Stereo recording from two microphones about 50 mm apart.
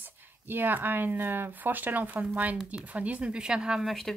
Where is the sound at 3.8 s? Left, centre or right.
Centre.